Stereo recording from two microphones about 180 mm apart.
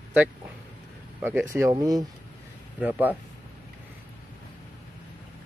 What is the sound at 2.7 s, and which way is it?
Speech, 10° right (ahead or behind).